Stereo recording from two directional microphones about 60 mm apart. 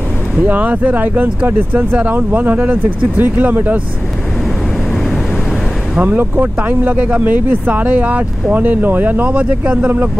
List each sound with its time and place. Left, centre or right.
0.4 s speech: right
5.9 s speech: right
9.2 s speech: right